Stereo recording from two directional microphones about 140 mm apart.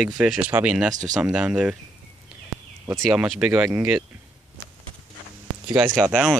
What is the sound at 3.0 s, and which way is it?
Speech, centre (ahead or behind).